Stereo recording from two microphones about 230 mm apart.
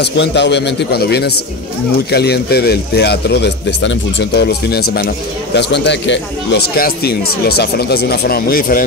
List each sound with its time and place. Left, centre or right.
0.0 s speech: left